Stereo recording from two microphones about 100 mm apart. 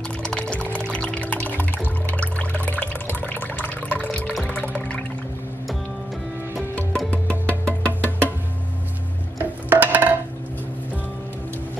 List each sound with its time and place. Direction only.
0.2 s music: 10° left (ahead or behind)
6.7 s music: 15° left (ahead or behind)
9.4 s music: 15° right (ahead or behind)